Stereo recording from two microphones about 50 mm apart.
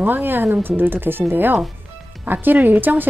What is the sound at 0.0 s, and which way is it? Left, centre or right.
A woman's voice, right.